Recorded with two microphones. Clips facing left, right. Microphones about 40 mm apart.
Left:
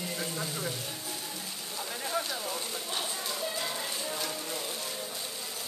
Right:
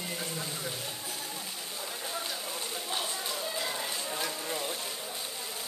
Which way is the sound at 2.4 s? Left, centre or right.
Centre.